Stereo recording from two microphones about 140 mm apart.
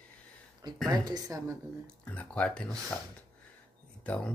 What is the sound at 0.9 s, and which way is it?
Speech, 25° right (ahead or behind).